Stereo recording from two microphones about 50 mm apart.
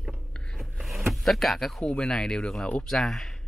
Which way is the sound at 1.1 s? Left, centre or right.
Centre.